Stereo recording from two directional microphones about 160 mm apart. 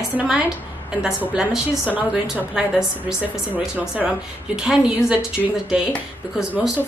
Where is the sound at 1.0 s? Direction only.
5° right (ahead or behind).